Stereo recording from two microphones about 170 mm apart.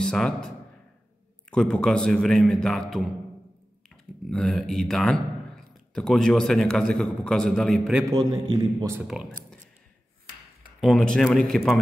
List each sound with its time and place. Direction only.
0.0 s speech: 5° left (ahead or behind)
1.5 s a man's voice: 5° left (ahead or behind)
3.9 s a man's voice: 5° left (ahead or behind)
8.1 s a man's voice: 25° right (ahead or behind)
8.9 s a man's voice: 5° right (ahead or behind)
10.8 s a man's voice: 5° left (ahead or behind)